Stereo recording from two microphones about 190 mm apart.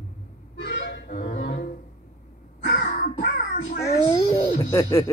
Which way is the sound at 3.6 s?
60° left (ahead or behind).